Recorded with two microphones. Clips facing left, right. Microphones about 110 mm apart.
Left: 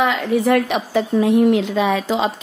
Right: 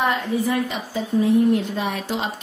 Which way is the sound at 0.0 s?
85° left.